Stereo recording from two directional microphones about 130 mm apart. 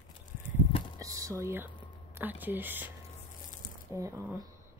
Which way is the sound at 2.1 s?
15° right (ahead or behind).